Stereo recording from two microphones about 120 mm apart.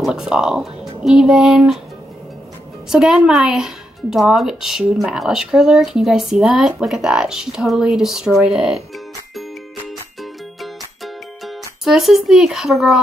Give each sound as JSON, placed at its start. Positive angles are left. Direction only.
{"t": 0.0, "sound": "speech", "side_deg": -5}
{"t": 2.9, "sound": "speech", "side_deg": -5}
{"t": 11.4, "sound": "speech", "side_deg": -5}